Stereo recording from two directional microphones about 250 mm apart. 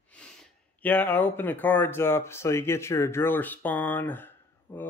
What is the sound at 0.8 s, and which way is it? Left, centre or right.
Speech, centre.